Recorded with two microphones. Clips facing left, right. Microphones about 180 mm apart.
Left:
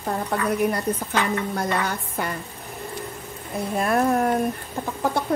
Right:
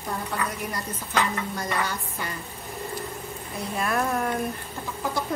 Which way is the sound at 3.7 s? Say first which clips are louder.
Left 5 dB; 40° left (ahead or behind).